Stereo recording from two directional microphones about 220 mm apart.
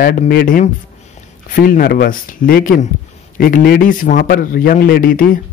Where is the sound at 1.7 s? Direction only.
45° left (ahead or behind).